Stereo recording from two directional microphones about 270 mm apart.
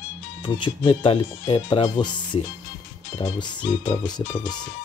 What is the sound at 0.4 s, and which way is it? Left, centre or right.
Speech, centre.